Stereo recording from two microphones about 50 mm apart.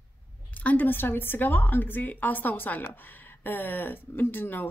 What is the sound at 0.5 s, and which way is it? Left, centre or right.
A woman's voice, left.